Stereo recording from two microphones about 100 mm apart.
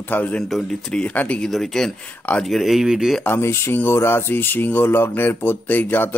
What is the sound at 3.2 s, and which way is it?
Speech, 25° left (ahead or behind).